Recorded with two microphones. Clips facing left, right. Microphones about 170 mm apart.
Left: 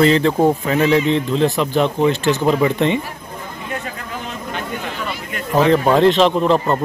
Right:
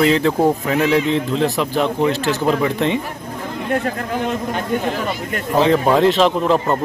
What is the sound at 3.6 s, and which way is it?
A man's voice, 55° right (ahead or behind).